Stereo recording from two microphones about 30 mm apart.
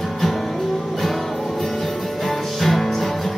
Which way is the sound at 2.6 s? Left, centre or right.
Centre.